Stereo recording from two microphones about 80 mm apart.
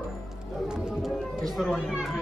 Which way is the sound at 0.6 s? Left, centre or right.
Centre.